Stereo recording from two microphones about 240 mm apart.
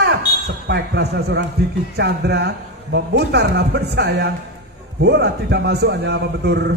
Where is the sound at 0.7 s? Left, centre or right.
Right.